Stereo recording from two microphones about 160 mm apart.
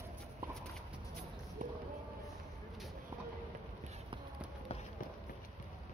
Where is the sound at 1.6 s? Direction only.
55° right (ahead or behind).